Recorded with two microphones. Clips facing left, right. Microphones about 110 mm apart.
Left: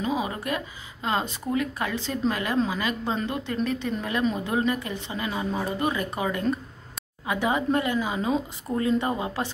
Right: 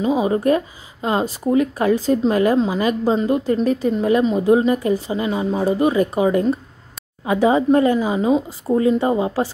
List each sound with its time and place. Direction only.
0.0 s a woman's voice: 25° right (ahead or behind)